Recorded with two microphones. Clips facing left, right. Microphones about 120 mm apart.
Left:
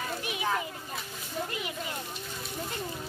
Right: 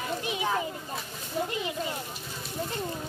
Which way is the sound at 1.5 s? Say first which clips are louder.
Right 4 dB; 25° right (ahead or behind).